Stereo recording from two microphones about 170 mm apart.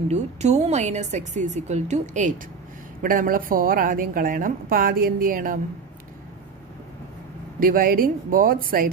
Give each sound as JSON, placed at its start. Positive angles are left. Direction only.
{"t": 0.1, "sound": "a woman's voice", "side_deg": -40}
{"t": 3.0, "sound": "a woman's voice", "side_deg": -55}
{"t": 7.6, "sound": "a woman's voice", "side_deg": -55}